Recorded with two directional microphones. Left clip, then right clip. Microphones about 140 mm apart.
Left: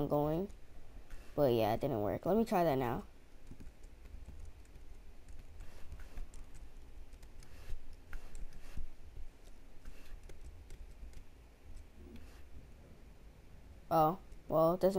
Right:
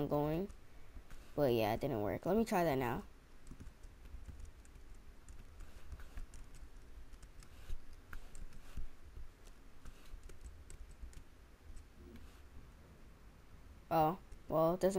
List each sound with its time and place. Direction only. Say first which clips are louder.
0.0 s a sound: left 3 dB; 15° right (ahead or behind)
1.3 s speech: left 3 dB; 15° right (ahead or behind)
13.8 s speech: left 3 dB; 15° right (ahead or behind)